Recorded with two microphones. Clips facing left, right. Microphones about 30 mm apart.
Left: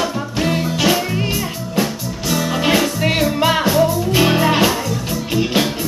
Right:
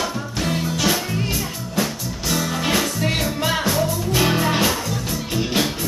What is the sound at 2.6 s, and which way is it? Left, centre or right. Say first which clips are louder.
Music: left 5 dB; centre.